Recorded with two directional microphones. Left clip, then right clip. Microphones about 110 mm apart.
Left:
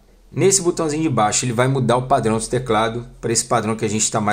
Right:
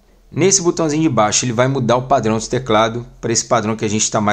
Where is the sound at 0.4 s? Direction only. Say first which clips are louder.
Right 2 dB; 15° right (ahead or behind).